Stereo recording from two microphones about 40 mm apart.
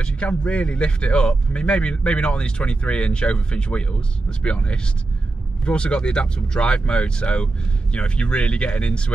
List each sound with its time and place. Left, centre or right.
0.0 s speech: left